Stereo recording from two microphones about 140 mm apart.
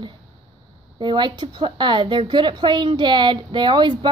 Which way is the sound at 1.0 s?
35° right (ahead or behind).